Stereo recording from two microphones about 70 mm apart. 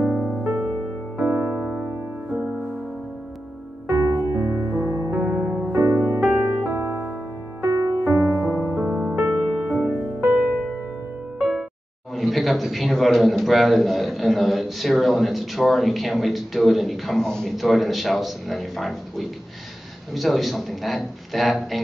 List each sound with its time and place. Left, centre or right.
0.0 s music: centre
4.4 s music: right
5.8 s music: right
9.4 s music: centre
9.7 s music: right
12.2 s a man's voice: centre